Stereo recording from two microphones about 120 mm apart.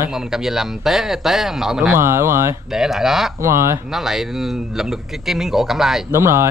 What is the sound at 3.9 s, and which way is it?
Speech, 5° right (ahead or behind).